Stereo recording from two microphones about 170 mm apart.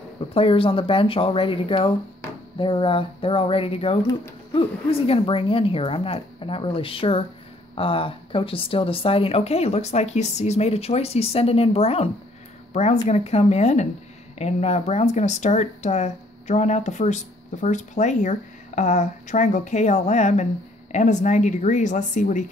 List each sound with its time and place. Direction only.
0.3 s speech: 35° left (ahead or behind)